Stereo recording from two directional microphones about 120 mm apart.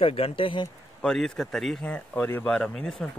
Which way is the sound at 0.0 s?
50° left (ahead or behind).